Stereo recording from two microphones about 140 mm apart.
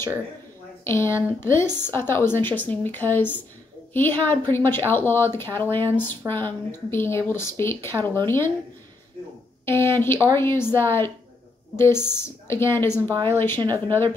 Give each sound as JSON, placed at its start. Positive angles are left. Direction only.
{"t": 0.8, "sound": "a woman's voice", "side_deg": 20}
{"t": 9.7, "sound": "speech", "side_deg": 15}